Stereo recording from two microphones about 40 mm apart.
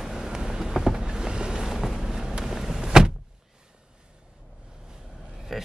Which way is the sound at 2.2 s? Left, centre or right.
Centre.